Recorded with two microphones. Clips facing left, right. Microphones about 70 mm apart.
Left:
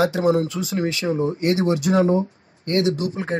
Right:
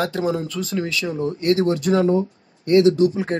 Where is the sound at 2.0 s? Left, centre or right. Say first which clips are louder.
Right 1 dB; left.